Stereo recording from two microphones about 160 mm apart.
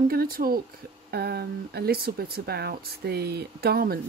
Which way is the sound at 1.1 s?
80° right.